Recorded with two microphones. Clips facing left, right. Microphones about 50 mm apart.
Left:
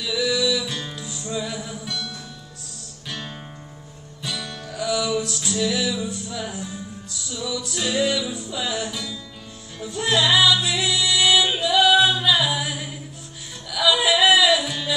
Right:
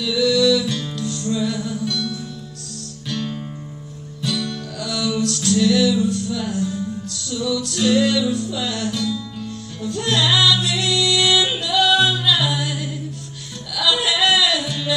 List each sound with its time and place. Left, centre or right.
0.0 s music: centre
13.7 s yodeling: centre